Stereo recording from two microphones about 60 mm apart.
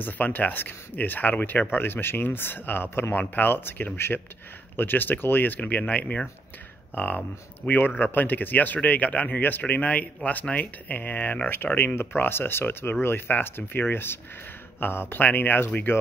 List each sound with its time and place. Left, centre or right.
0.0 s speech: left
11.5 s speech: left